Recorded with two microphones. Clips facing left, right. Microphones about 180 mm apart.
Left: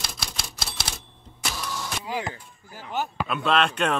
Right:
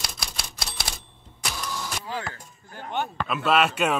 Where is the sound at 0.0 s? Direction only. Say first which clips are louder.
Even; centre (ahead or behind).